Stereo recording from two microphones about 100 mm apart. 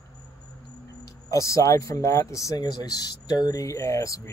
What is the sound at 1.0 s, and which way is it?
Speech, 35° left (ahead or behind).